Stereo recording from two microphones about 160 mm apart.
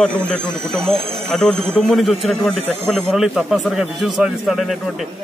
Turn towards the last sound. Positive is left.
turn(degrees=0)  # may be behind; listen again after turning